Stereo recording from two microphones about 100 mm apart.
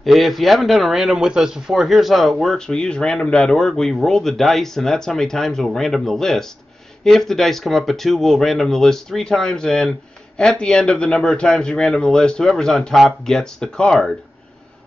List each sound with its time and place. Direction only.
0.0 s speech: centre (ahead or behind)